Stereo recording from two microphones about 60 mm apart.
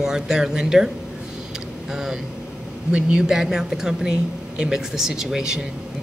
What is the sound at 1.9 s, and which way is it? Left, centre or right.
Speech, centre.